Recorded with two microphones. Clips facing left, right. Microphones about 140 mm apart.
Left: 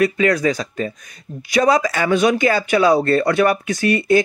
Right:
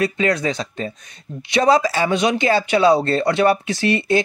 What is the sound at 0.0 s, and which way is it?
Speech, 25° right (ahead or behind).